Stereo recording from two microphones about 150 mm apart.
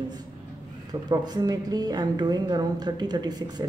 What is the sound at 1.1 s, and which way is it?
Speech, 25° right (ahead or behind).